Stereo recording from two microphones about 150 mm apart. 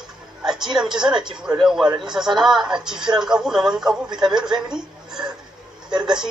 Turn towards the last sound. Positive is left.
turn(degrees=-5)  # may be behind; listen again after turning